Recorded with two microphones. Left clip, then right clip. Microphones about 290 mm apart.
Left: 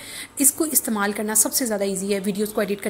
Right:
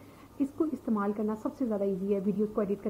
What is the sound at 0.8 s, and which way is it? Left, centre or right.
A woman's voice, left.